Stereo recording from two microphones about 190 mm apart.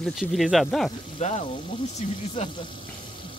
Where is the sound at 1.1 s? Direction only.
35° left (ahead or behind).